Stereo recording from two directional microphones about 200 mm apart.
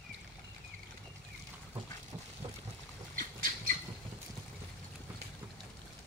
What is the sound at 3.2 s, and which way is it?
Squawk, 45° right (ahead or behind).